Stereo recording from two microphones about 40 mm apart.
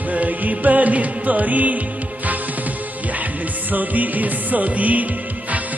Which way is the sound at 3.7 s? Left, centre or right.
Right.